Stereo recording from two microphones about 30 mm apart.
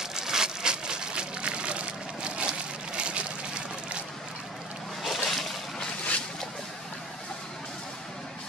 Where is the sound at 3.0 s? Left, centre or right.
Right.